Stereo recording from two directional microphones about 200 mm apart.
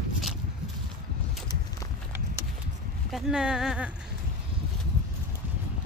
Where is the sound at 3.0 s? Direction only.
Centre (ahead or behind).